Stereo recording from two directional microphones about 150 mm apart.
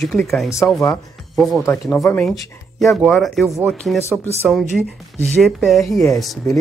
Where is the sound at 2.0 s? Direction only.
15° left (ahead or behind).